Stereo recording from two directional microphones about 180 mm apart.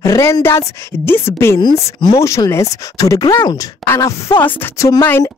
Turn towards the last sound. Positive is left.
turn(degrees=15)  # may be behind; listen again after turning